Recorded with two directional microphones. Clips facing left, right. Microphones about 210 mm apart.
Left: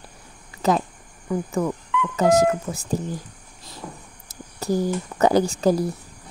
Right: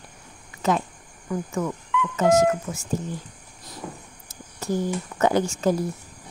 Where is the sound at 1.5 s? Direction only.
35° left (ahead or behind).